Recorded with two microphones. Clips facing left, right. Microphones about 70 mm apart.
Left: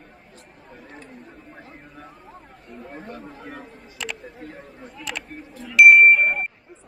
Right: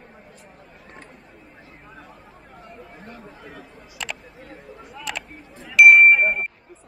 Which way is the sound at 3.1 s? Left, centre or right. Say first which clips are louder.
Left 4 dB; left.